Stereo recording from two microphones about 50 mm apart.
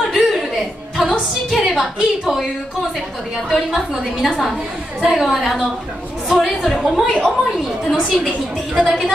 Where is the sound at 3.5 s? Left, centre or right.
Centre.